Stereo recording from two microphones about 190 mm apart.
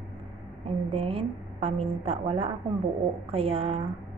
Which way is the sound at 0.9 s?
30° right (ahead or behind).